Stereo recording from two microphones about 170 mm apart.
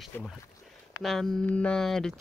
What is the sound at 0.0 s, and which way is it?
Speech, centre (ahead or behind).